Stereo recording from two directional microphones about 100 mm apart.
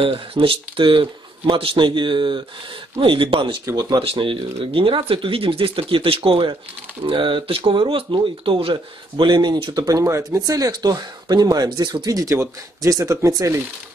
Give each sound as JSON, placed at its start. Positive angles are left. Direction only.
{"t": 0.0, "sound": "speech", "side_deg": -65}
{"t": 3.0, "sound": "speech", "side_deg": -65}
{"t": 3.6, "sound": "speech", "side_deg": -40}
{"t": 4.0, "sound": "speech", "side_deg": -65}